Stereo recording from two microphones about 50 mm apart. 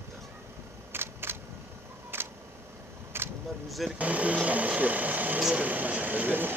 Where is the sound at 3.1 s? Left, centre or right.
Right.